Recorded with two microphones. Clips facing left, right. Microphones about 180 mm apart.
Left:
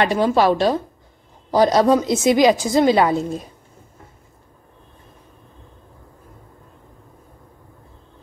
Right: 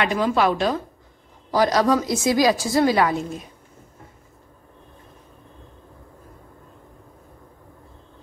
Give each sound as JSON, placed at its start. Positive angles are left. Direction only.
{"t": 0.0, "sound": "a woman's voice", "side_deg": 35}